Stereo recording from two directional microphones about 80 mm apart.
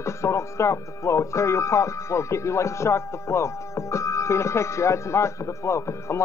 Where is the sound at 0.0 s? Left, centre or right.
Left.